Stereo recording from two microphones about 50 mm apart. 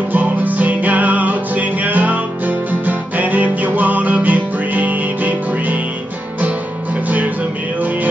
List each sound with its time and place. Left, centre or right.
0.1 s music: right